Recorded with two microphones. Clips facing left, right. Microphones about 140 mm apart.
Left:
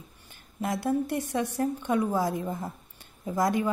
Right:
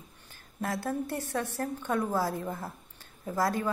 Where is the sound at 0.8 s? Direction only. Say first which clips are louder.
Left 5 dB; 15° left (ahead or behind).